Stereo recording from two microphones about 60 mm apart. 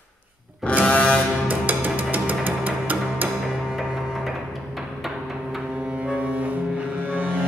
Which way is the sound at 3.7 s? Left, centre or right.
Centre.